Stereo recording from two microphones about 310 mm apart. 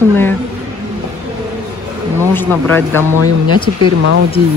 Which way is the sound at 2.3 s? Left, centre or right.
Centre.